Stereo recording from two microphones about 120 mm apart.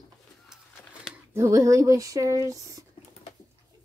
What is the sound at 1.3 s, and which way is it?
Speech, 25° right (ahead or behind).